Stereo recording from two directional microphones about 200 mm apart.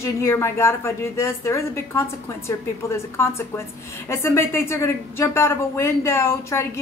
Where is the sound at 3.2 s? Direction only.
15° left (ahead or behind).